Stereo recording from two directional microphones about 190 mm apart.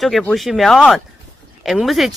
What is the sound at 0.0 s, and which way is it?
Speech, centre (ahead or behind).